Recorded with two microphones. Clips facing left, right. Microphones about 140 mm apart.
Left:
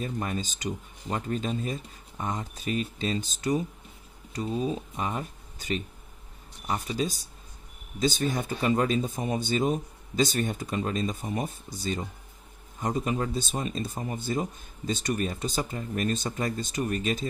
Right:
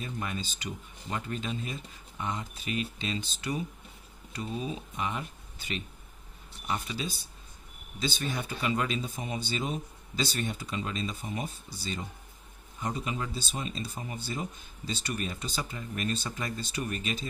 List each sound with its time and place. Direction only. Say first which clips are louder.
0.0 s speech: left 5 dB; 40° left (ahead or behind)